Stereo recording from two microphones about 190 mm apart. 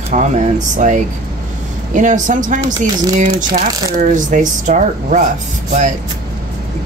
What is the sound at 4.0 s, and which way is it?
Speech, 40° right (ahead or behind).